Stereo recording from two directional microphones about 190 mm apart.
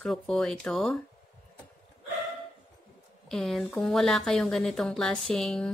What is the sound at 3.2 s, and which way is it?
Speech, centre (ahead or behind).